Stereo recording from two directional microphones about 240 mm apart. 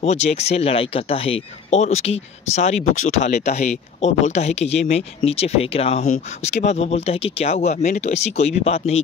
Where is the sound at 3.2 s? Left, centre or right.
Left.